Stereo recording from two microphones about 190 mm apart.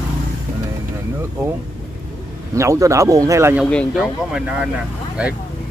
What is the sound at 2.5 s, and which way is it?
Speech, 15° right (ahead or behind).